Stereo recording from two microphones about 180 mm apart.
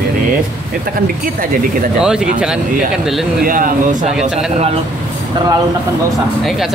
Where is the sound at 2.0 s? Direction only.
5° right (ahead or behind).